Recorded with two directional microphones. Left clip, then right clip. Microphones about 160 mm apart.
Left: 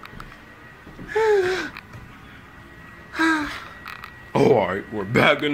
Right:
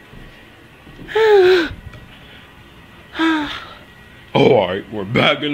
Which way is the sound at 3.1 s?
20° right (ahead or behind).